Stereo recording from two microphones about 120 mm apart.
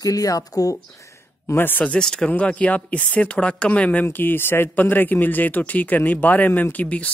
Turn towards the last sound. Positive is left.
turn(degrees=10)  # may be behind; listen again after turning